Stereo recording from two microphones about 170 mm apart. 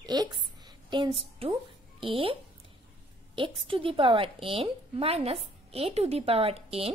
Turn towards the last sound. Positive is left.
turn(degrees=-35)  # may be behind; listen again after turning